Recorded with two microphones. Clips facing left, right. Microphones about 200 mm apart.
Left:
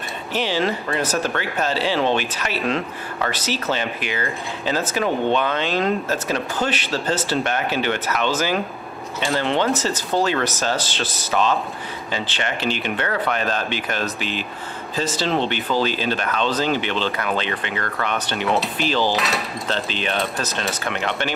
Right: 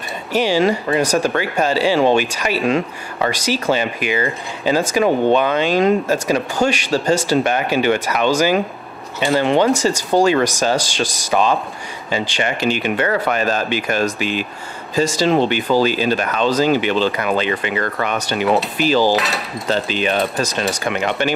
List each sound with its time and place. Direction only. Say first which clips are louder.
0.3 s speech: right 6 dB; 10° right (ahead or behind)
18.3 s cutlery: right 6 dB; 5° right (ahead or behind)
20.8 s speech: right 5 dB; 10° right (ahead or behind)